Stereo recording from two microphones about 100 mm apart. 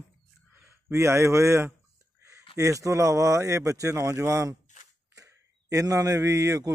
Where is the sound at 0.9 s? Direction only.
30° right (ahead or behind).